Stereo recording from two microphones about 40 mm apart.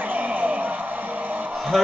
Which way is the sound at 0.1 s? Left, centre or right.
Right.